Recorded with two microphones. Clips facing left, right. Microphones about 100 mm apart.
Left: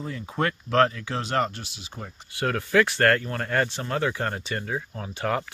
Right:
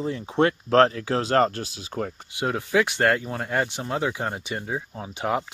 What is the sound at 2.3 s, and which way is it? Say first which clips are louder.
Speech: left 1 dB; 15° right (ahead or behind).